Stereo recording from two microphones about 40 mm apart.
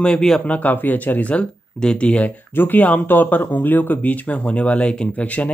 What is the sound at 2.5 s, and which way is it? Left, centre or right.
Speech, left.